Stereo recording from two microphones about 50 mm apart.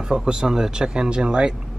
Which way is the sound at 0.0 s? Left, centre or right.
Centre.